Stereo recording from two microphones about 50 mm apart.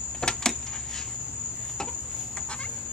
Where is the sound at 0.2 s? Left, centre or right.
Centre.